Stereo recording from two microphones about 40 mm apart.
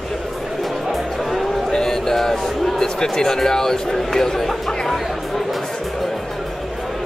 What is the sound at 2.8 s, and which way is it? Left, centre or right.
Speech, centre.